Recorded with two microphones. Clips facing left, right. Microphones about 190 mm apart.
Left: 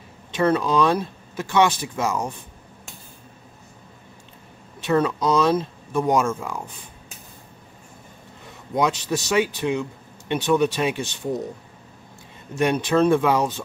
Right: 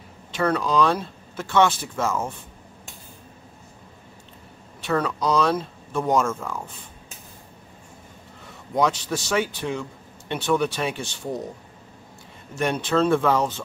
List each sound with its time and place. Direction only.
0.3 s a man's voice: 20° left (ahead or behind)
4.8 s a man's voice: 20° left (ahead or behind)
8.7 s a man's voice: 20° left (ahead or behind)
12.5 s a man's voice: 15° left (ahead or behind)